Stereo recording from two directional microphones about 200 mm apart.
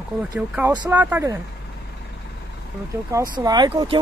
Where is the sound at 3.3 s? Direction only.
20° right (ahead or behind).